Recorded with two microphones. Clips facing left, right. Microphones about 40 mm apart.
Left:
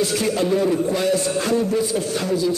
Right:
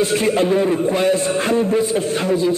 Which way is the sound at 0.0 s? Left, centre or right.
Right.